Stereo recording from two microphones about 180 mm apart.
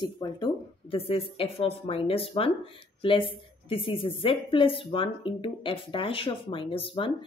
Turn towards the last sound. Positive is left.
turn(degrees=30)  # may be behind; listen again after turning